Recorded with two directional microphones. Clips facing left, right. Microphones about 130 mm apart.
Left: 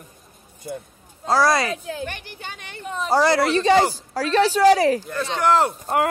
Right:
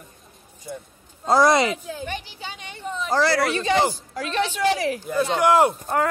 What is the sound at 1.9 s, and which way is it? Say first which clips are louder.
A woman's voice: left 1 dB; 60° left (ahead or behind).